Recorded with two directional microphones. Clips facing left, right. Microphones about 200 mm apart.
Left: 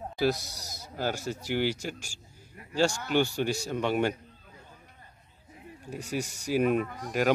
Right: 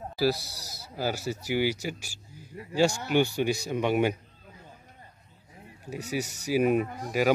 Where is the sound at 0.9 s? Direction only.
5° right (ahead or behind).